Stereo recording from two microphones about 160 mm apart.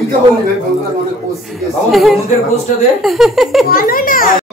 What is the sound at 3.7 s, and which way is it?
Speech, 65° left (ahead or behind).